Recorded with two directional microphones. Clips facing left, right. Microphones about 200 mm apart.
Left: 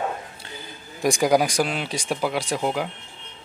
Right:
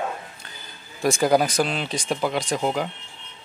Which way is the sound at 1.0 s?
15° left (ahead or behind).